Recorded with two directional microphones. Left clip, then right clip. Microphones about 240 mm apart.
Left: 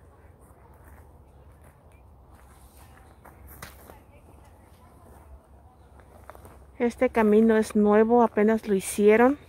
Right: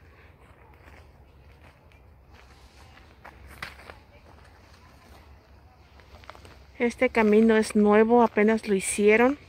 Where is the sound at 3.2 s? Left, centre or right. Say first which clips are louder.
Right 6 dB; right.